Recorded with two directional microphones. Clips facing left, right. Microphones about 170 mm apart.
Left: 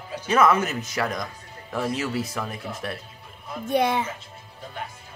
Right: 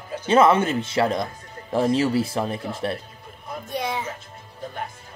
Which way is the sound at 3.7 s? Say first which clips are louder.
Left 6 dB; 55° left (ahead or behind).